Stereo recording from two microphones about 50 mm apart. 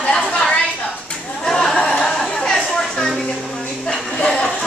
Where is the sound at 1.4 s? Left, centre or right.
Centre.